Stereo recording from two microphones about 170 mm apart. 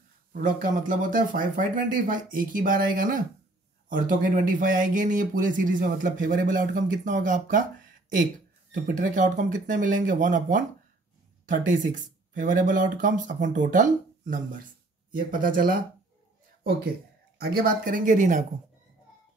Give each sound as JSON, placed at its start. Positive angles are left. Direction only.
{"t": 0.3, "sound": "speech", "side_deg": -55}
{"t": 8.8, "sound": "speech", "side_deg": -50}
{"t": 17.4, "sound": "speech", "side_deg": -60}